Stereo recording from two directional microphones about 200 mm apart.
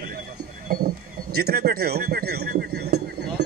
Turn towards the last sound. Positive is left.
turn(degrees=-55)  # may be behind; listen again after turning